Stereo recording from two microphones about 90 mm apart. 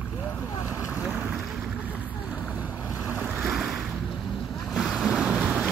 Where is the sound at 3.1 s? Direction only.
20° right (ahead or behind).